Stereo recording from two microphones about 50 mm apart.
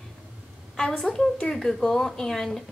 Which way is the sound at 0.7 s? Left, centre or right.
Centre.